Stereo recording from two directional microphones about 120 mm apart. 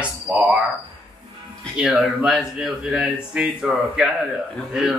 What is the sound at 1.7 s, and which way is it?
Speech, 5° right (ahead or behind).